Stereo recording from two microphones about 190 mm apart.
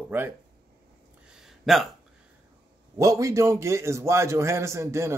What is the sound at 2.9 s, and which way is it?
A man's voice, 15° right (ahead or behind).